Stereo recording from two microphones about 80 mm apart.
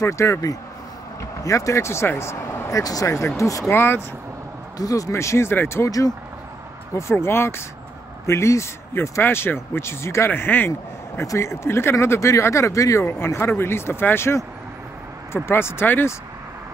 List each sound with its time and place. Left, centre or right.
0.0 s speech: left
2.8 s speech: left
3.7 s speech: left
4.7 s speech: left
5.9 s speech: left
7.0 s speech: left
10.7 s speech: left